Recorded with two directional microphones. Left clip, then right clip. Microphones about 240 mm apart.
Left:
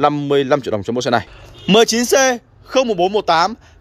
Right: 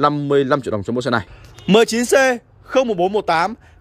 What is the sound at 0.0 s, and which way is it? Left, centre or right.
A man's voice, right.